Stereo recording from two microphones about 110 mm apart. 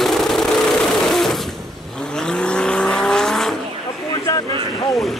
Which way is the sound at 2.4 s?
10° left (ahead or behind).